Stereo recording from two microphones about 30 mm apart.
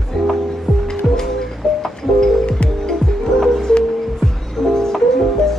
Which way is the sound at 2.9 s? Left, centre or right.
Centre.